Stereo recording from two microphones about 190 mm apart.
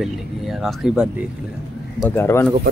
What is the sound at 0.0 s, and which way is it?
Speech, centre (ahead or behind).